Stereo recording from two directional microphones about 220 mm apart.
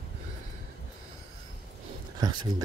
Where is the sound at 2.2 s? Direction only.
20° right (ahead or behind).